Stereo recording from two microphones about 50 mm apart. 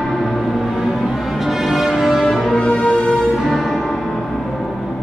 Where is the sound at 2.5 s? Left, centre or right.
Centre.